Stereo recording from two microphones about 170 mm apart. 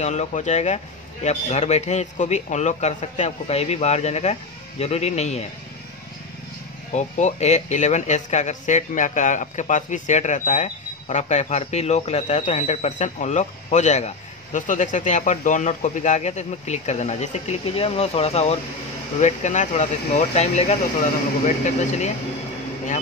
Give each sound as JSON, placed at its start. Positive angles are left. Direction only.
{"t": 0.0, "sound": "a man's voice", "side_deg": 40}
{"t": 6.9, "sound": "a man's voice", "side_deg": 45}